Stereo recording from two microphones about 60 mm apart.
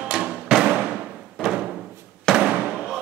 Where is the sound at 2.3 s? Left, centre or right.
Centre.